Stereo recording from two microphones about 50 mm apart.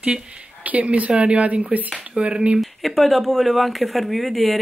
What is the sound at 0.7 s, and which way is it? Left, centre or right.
Speech, right.